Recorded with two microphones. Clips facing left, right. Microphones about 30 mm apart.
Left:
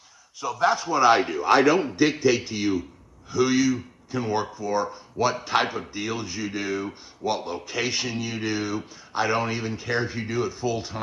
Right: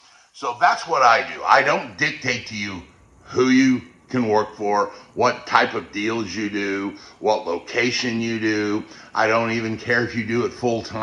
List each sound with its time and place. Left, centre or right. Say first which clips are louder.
0.4 s a man's voice: right 4 dB; right